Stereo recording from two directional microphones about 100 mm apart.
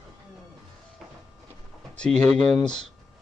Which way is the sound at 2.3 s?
90° right.